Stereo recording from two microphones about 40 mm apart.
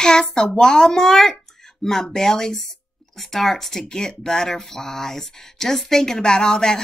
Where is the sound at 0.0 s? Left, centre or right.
Centre.